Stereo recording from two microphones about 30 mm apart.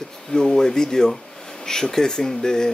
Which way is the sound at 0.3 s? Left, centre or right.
Left.